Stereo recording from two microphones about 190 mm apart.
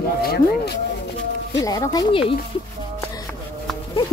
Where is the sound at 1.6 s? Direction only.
20° left (ahead or behind).